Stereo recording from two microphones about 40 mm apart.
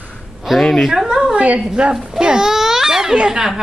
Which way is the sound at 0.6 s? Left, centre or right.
Centre.